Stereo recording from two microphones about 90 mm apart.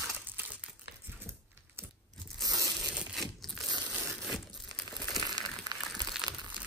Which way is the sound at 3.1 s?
Centre (ahead or behind).